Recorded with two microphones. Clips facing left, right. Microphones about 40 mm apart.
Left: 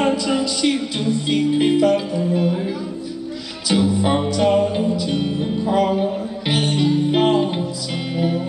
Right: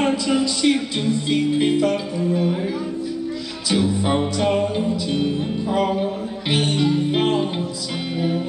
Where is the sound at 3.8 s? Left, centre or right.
Centre.